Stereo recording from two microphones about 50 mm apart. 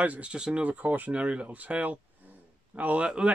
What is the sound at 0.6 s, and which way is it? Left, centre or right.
Speech, right.